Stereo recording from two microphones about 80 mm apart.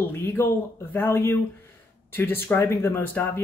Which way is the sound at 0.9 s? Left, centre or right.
Left.